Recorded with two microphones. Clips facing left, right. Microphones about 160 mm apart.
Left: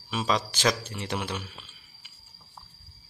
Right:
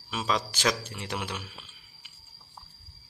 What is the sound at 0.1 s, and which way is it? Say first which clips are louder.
Speech: left 2 dB; centre (ahead or behind).